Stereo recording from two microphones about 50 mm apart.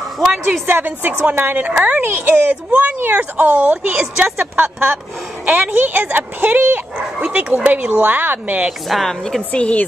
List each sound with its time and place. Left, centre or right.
0.7 s a woman's voice: right
1.7 s a woman's voice: right
2.0 s speech: right
3.9 s a woman's voice: right
4.6 s a woman's voice: right
8.8 s a woman's voice: centre
9.5 s a woman's voice: left